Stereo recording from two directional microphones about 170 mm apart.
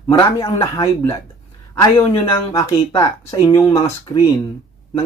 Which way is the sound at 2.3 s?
15° left (ahead or behind).